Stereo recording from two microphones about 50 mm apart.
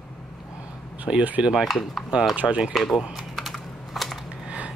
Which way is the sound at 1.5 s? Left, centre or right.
Centre.